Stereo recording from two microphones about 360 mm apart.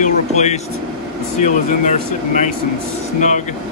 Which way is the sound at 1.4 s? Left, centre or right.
Left.